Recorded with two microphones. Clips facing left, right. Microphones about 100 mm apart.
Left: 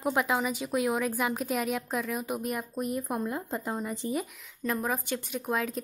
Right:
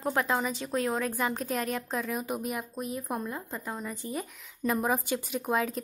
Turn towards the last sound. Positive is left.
turn(degrees=0)  # may be behind; listen again after turning